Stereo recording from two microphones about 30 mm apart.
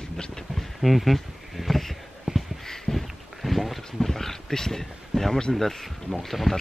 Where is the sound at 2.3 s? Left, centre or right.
Centre.